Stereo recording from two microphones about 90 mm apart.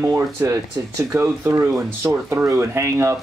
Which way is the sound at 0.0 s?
20° right (ahead or behind).